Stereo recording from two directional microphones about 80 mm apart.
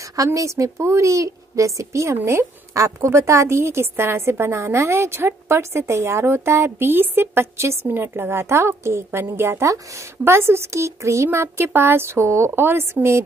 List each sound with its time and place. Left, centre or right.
0.1 s a woman's voice: right